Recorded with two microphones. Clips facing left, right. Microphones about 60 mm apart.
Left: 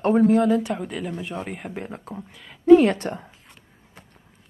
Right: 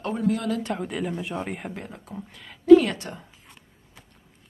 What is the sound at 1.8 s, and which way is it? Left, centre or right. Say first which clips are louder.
Speech: left 5 dB; left.